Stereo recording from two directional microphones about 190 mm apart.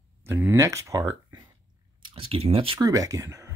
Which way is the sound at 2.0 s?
30° right (ahead or behind).